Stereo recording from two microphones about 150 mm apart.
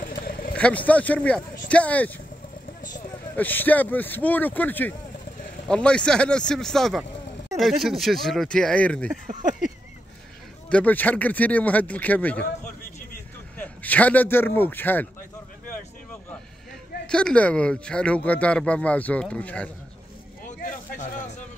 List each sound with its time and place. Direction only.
0.0 s vehicle: 70° left (ahead or behind)
0.6 s speech: 10° left (ahead or behind)
3.3 s speech: 10° left (ahead or behind)
9.3 s a sound: 55° right (ahead or behind)
10.7 s speech: 10° left (ahead or behind)
13.6 s speech: 10° left (ahead or behind)
17.1 s speech: 5° left (ahead or behind)
20.4 s a sound: 55° left (ahead or behind)